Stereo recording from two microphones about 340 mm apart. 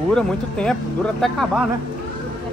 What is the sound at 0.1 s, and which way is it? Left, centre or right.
Speech, centre.